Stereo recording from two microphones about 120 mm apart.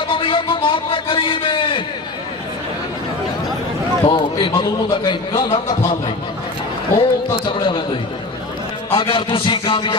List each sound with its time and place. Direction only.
0.1 s a sound: 45° left (ahead or behind)
4.0 s a man's voice: 45° left (ahead or behind)
7.0 s a man's voice: 40° left (ahead or behind)